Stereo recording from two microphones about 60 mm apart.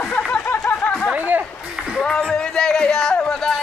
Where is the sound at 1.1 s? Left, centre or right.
Right.